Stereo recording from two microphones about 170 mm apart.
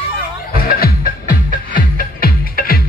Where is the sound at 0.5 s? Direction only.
60° left (ahead or behind).